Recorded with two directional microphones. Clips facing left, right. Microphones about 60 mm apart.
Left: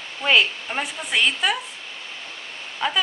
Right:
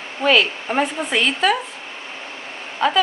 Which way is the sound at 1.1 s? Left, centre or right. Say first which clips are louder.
Right 1 dB; centre.